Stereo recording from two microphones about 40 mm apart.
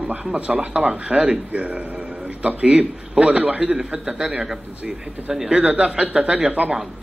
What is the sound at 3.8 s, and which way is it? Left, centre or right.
Speech, right.